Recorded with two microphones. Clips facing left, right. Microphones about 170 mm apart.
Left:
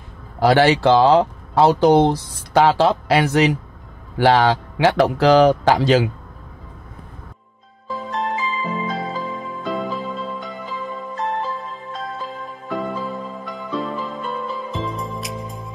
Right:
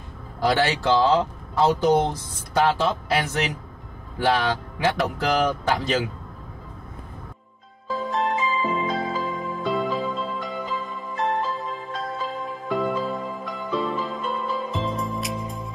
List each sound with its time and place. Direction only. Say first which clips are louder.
0.4 s speech: left 7 dB; 65° left (ahead or behind)
7.9 s music: even; centre (ahead or behind)
12.6 s music: right 1 dB; centre (ahead or behind)